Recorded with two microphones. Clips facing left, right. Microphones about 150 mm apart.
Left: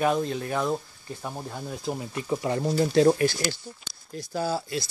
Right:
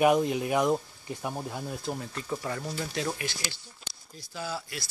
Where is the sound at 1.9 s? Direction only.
10° left (ahead or behind).